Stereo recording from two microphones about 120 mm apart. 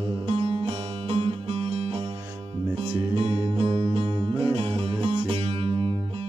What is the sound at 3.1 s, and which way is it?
Music, 55° right (ahead or behind).